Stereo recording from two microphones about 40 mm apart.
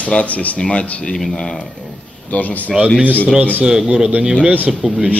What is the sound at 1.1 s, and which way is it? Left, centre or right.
Speech, centre.